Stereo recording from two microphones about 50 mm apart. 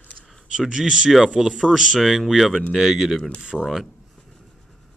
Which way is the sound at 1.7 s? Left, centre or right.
Centre.